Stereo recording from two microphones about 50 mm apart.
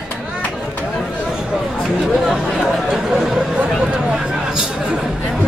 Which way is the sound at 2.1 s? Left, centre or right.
Centre.